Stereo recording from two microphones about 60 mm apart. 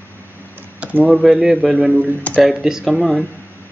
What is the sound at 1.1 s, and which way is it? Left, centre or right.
Speech, centre.